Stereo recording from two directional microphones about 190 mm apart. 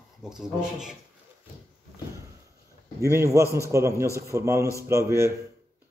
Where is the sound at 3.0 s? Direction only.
15° right (ahead or behind).